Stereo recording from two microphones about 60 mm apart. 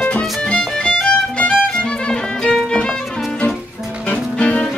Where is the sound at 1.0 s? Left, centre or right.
Centre.